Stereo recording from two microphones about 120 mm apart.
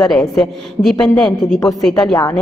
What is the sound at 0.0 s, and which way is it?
A woman's voice, 5° left (ahead or behind).